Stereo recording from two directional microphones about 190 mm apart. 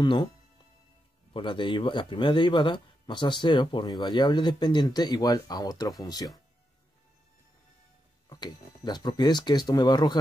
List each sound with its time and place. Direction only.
0.0 s speech: 25° left (ahead or behind)
1.3 s speech: 25° left (ahead or behind)
8.3 s speech: 20° left (ahead or behind)